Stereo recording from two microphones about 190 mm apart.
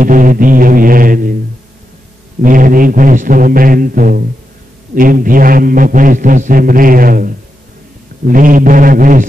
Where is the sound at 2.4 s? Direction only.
45° right (ahead or behind).